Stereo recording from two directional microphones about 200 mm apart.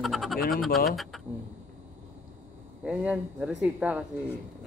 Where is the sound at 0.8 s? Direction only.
Centre (ahead or behind).